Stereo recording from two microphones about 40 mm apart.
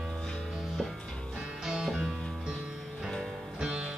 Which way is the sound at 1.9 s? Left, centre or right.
Centre.